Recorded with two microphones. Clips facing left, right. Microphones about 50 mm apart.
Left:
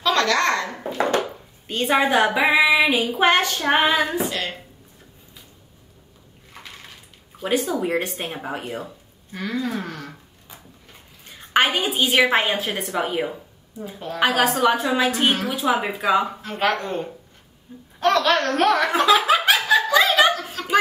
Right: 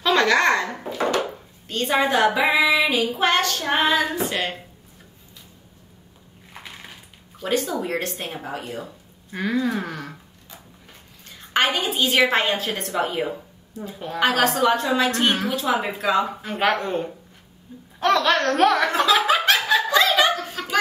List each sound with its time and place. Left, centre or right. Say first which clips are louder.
0.0 s babbling: right 2 dB; centre
1.7 s a woman's voice: left 2 dB; centre
2.5 s child singing: left 2 dB; centre
6.5 s a sound: right 1 dB; centre
7.3 s child singing: left 1 dB; centre
9.3 s speech: right 3 dB; centre
10.5 s a woman's voice: even; centre
16.3 s speech: right 1 dB; centre
17.7 s speech: even; centre
18.0 s a woman's voice: even; centre
18.9 s laughter: left 2 dB; centre